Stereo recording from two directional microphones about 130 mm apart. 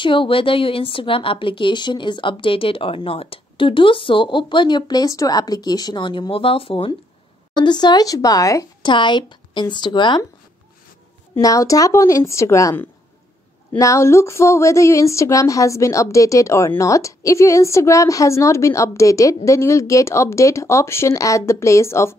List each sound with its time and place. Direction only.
0.0 s a woman's voice: 40° left (ahead or behind)
7.5 s speech: 35° left (ahead or behind)
8.9 s a woman's voice: 35° left (ahead or behind)
11.4 s speech: 25° left (ahead or behind)